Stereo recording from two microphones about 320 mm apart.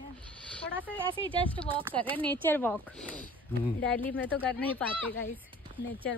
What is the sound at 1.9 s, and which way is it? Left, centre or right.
Speech, centre.